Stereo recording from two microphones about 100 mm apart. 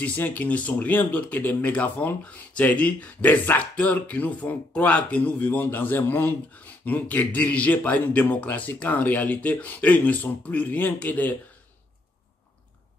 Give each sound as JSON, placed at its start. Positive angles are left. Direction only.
{"t": 0.0, "sound": "speech", "side_deg": 15}